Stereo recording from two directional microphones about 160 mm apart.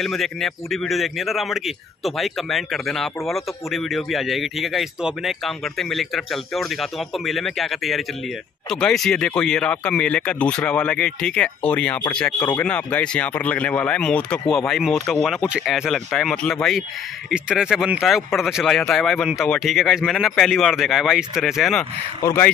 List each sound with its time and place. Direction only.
0.0 s speech: centre (ahead or behind)
22.2 s speech: 15° left (ahead or behind)